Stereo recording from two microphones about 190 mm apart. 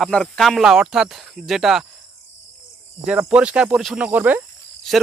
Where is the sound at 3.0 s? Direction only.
5° right (ahead or behind).